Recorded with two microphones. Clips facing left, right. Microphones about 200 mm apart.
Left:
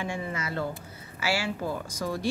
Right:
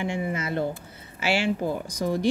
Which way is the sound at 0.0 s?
20° right (ahead or behind).